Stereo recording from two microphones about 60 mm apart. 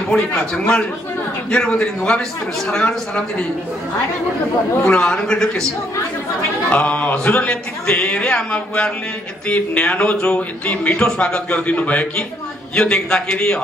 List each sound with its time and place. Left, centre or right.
0.1 s a man's voice: centre
4.8 s a man's voice: centre
6.7 s a man's voice: left
11.5 s a man's voice: left